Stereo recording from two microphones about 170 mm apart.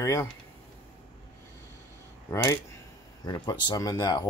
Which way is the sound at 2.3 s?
20° left (ahead or behind).